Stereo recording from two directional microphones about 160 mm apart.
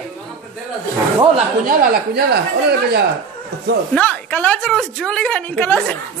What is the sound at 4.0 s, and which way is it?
A woman's voice, 10° left (ahead or behind).